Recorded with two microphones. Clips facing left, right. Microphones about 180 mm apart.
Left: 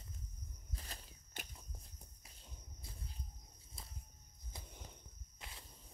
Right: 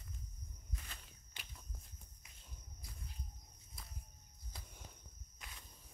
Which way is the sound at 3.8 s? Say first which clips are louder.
Left 1 dB; 25° left (ahead or behind).